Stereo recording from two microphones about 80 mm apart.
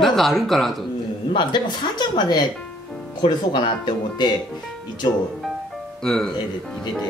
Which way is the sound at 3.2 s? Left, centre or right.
Left.